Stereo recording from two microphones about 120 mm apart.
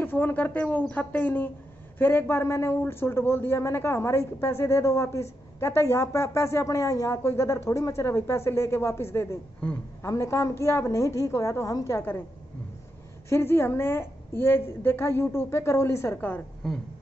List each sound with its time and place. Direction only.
0.0 s a woman's voice: 15° left (ahead or behind)
13.3 s a woman's voice: 20° left (ahead or behind)